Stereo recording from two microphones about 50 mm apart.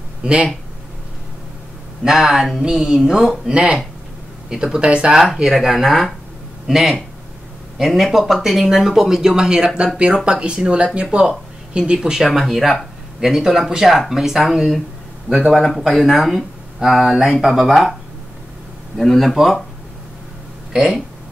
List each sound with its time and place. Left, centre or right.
0.2 s speech: right
2.0 s speech: centre
5.1 s speech: centre
15.3 s speech: centre
18.9 s speech: centre
20.7 s speech: centre